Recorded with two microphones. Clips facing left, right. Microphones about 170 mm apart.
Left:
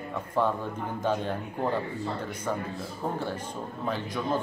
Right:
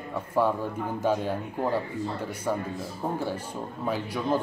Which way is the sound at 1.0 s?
10° right (ahead or behind).